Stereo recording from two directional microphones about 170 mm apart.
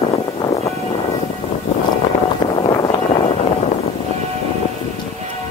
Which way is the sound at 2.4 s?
35° left (ahead or behind).